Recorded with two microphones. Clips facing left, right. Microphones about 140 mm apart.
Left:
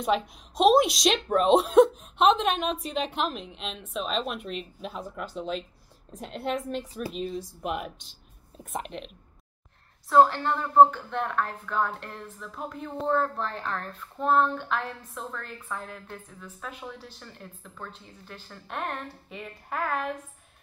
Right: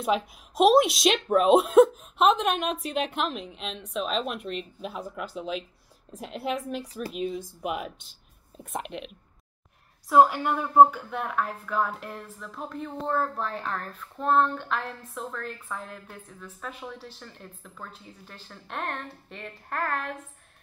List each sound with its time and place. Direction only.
0.0 s speech: centre (ahead or behind)